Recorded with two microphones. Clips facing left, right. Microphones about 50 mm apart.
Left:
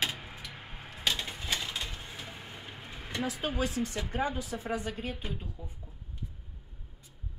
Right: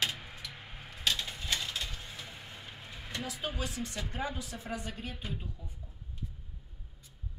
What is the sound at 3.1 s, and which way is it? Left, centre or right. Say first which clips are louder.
Speech: left 5 dB; left.